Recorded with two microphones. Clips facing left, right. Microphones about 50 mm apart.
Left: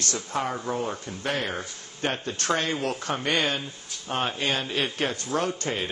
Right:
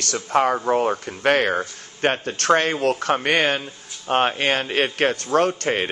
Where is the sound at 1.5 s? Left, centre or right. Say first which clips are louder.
Right 9 dB; right.